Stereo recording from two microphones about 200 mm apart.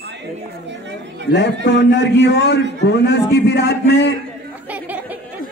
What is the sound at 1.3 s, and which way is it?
A man's voice, 60° left (ahead or behind).